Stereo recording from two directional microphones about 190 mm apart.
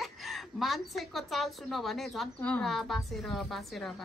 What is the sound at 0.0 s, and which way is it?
A woman's voice, centre (ahead or behind).